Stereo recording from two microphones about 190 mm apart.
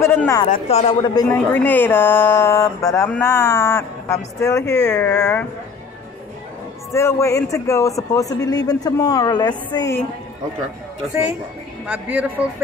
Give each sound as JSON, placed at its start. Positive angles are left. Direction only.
{"t": 0.0, "sound": "speech", "side_deg": 10}
{"t": 0.5, "sound": "speech", "side_deg": 35}
{"t": 1.5, "sound": "a man's voice", "side_deg": 10}
{"t": 6.9, "sound": "a man's voice", "side_deg": 15}
{"t": 11.8, "sound": "speech", "side_deg": -5}